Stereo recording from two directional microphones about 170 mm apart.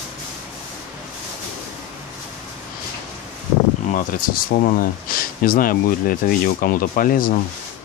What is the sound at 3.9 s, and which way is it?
Speech, 60° left (ahead or behind).